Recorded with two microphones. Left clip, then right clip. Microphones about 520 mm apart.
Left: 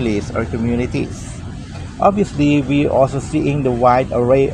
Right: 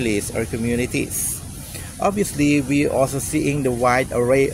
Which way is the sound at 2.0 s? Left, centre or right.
Right.